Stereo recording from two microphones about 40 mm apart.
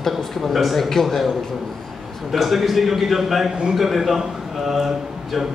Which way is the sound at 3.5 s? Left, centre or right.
Right.